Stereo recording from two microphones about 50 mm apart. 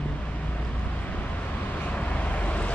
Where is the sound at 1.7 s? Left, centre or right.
Left.